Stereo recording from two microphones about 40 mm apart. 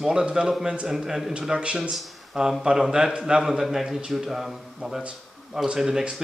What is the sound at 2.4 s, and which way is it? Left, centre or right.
A man's voice, centre.